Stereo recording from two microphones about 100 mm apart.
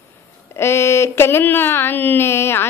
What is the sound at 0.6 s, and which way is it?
Speech, 25° left (ahead or behind).